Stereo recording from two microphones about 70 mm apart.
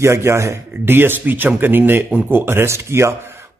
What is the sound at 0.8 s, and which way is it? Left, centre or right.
Speech, right.